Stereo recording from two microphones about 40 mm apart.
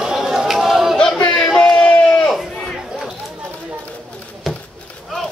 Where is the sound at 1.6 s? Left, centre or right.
Left.